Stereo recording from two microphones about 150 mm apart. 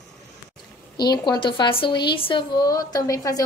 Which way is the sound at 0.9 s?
30° left (ahead or behind).